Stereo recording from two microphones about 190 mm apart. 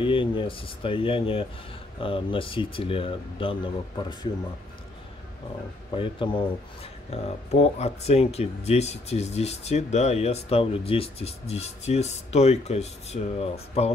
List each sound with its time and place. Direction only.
0.0 s speech: 25° left (ahead or behind)
5.9 s speech: 25° left (ahead or behind)